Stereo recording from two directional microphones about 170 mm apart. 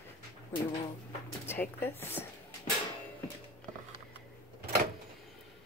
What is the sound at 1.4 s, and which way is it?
Speech, 15° left (ahead or behind).